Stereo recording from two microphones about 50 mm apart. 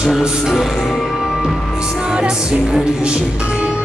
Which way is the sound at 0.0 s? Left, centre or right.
Centre.